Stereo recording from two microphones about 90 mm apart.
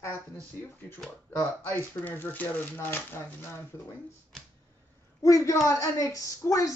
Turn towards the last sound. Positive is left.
turn(degrees=40)  # may be behind; listen again after turning